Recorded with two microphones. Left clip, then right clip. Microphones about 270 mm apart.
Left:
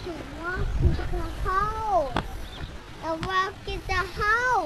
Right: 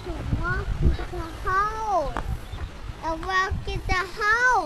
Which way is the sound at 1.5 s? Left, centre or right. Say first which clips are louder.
Right 2 dB; right.